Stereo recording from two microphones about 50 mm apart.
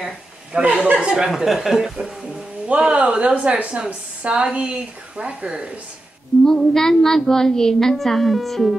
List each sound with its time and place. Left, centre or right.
0.0 s speech: right
0.9 s speech: centre
2.0 s a woman's voice: right
6.4 s a woman's voice: centre